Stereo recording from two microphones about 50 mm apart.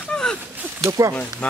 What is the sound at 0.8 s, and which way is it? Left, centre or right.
Speech, right.